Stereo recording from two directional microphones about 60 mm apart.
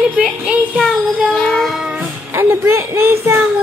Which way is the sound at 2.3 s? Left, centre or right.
Right.